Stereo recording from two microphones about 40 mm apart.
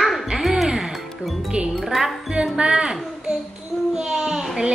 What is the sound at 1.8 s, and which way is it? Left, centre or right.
Speech, centre.